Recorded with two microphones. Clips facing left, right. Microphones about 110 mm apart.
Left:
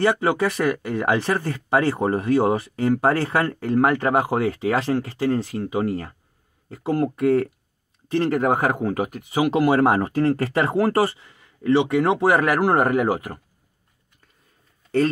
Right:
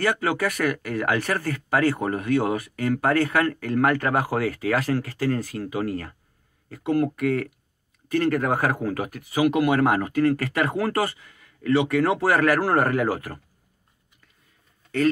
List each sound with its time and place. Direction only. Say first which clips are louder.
0.0 s speech: left 4 dB; 25° left (ahead or behind)